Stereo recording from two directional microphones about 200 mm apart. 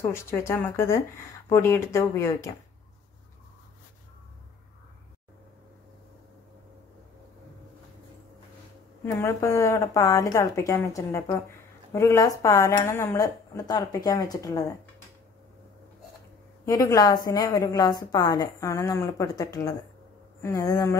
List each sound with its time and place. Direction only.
0.0 s a woman's voice: 15° left (ahead or behind)
9.0 s a woman's voice: 15° left (ahead or behind)
16.6 s a woman's voice: 15° left (ahead or behind)